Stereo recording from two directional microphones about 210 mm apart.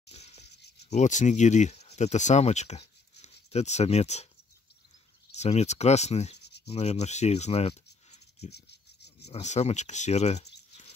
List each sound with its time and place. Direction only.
0.8 s speech: 35° left (ahead or behind)
5.3 s speech: 30° left (ahead or behind)
8.5 s a sound: 50° left (ahead or behind)
9.3 s speech: 30° left (ahead or behind)